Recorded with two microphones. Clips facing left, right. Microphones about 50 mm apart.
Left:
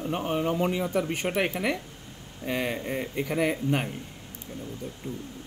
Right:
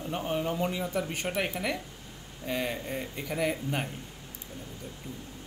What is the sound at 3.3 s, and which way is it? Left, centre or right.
Speech, left.